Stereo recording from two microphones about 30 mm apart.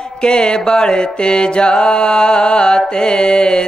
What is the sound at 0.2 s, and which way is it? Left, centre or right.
Mantra, left.